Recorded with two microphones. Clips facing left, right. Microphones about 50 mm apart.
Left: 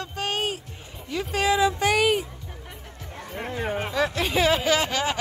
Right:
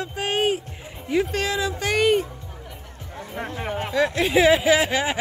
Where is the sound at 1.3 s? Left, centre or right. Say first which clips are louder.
Left 3 dB; centre.